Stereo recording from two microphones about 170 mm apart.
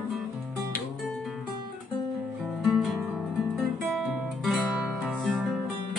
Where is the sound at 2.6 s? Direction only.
Centre (ahead or behind).